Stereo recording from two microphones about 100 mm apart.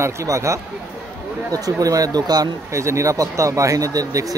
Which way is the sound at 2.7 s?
30° right (ahead or behind).